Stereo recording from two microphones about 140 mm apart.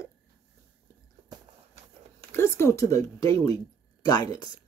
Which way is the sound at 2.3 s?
20° left (ahead or behind).